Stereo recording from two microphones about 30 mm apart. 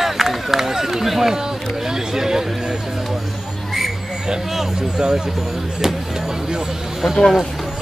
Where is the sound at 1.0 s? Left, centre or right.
Centre.